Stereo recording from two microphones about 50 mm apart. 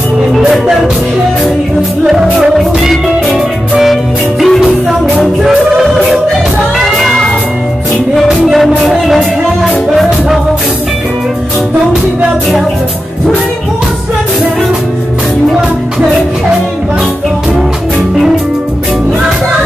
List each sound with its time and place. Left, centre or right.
2.9 s music: centre
8.3 s music: centre